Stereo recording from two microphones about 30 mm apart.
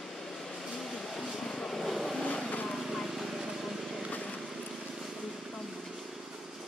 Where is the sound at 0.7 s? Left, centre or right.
Centre.